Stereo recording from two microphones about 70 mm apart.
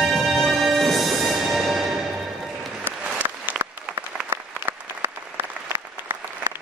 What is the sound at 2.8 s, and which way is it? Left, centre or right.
Applause, right.